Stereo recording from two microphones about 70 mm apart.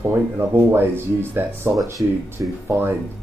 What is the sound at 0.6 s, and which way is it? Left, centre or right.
Speech, right.